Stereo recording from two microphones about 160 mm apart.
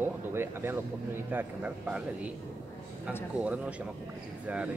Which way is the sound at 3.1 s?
10° right (ahead or behind).